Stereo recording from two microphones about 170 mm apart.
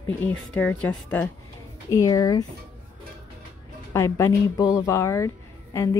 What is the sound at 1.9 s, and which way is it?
Speech, 20° left (ahead or behind).